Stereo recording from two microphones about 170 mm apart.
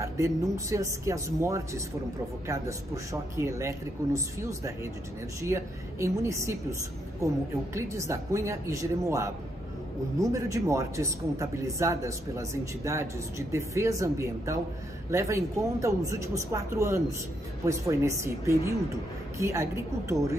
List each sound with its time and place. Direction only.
0.0 s a man's voice: 15° right (ahead or behind)
7.7 s a man's voice: 15° right (ahead or behind)